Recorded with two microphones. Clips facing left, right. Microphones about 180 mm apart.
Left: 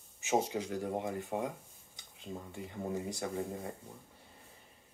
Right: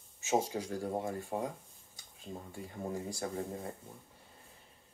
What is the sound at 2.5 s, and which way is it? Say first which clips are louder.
Speech: left 1 dB; 20° left (ahead or behind).